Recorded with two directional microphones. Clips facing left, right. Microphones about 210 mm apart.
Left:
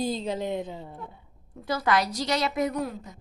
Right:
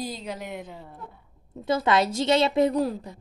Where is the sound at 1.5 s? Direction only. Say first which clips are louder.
Right 3 dB; 25° right (ahead or behind).